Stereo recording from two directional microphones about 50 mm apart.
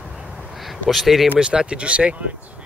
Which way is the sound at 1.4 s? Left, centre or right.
Centre.